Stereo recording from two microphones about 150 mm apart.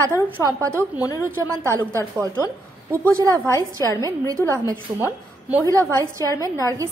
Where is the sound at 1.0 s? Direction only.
20° left (ahead or behind).